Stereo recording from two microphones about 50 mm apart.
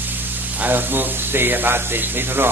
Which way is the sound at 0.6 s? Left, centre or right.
Right.